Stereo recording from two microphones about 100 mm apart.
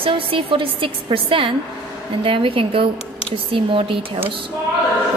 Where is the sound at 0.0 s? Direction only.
60° right (ahead or behind).